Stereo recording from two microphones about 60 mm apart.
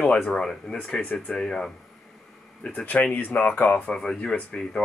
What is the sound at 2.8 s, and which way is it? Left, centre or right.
Speech, left.